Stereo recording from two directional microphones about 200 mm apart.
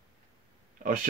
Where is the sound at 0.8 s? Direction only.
40° right (ahead or behind).